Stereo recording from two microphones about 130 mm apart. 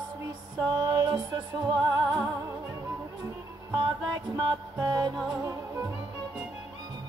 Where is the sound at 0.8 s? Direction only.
35° right (ahead or behind).